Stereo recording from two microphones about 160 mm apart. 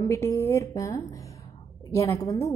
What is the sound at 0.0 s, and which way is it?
A woman's voice, 20° left (ahead or behind).